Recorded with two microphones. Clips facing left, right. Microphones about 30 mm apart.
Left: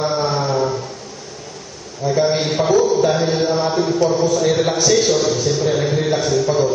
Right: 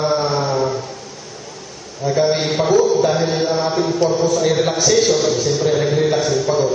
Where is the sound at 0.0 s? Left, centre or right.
Centre.